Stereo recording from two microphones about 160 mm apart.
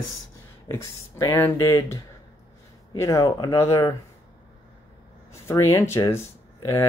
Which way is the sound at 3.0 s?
20° left (ahead or behind).